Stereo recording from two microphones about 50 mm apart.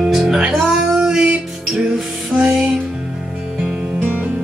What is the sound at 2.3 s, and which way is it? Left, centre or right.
Music, centre.